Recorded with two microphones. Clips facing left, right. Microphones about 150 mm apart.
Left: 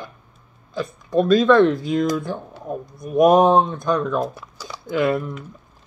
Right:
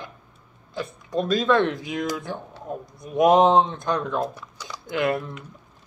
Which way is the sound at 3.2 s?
20° right (ahead or behind).